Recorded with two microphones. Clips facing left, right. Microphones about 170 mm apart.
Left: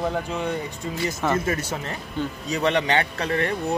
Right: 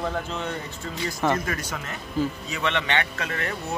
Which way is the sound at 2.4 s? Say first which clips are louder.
Left 5 dB; 40° left (ahead or behind).